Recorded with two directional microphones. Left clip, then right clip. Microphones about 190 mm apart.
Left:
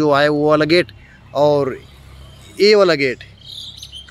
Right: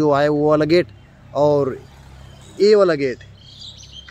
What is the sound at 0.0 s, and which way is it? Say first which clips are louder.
Speech: left 2 dB; 5° right (ahead or behind).